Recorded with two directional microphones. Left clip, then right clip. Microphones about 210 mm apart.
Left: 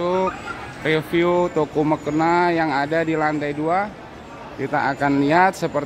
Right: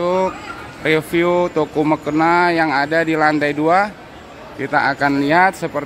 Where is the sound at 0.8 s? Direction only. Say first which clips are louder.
Right 3 dB; 5° right (ahead or behind).